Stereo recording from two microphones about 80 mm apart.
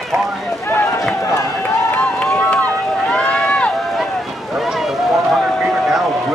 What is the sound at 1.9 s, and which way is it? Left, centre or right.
Run, centre.